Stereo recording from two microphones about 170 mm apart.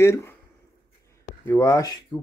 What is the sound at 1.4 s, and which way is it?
Speech, 15° left (ahead or behind).